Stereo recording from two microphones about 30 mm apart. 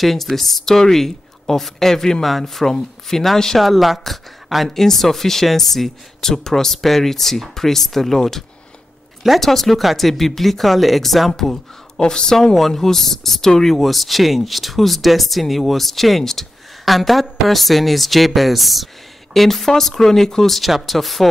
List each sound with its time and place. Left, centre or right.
0.0 s speech: centre
2.2 s speech: centre
3.5 s speech: centre
4.6 s speech: centre
12.0 s speech: left
12.5 s speech: centre
13.7 s speech: centre
20.6 s speech: centre